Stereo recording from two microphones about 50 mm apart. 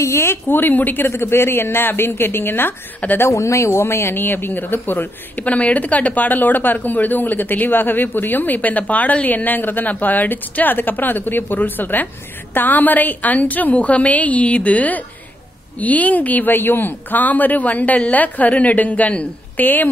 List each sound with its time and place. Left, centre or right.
0.0 s speech: left
1.1 s speech: left
3.3 s speech: left
5.4 s a woman's voice: left